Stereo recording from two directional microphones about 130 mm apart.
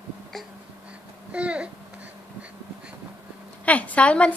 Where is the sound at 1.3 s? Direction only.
10° right (ahead or behind).